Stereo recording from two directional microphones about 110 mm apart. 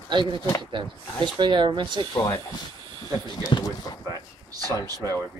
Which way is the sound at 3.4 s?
40° left (ahead or behind).